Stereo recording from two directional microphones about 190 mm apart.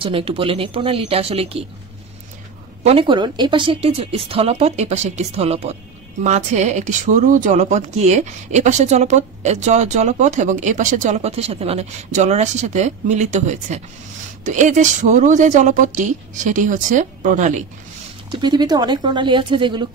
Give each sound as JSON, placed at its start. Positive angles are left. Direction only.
{"t": 0.0, "sound": "speech", "side_deg": -30}
{"t": 2.8, "sound": "speech", "side_deg": -30}
{"t": 18.3, "sound": "speech", "side_deg": -25}